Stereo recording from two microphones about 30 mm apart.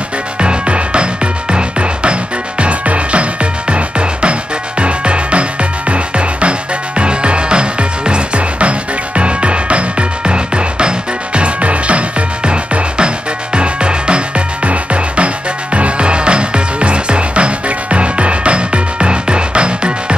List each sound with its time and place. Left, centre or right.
0.4 s music: right
12.4 s music: right